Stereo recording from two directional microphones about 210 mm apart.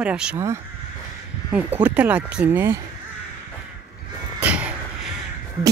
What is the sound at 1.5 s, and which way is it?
Speech, 5° right (ahead or behind).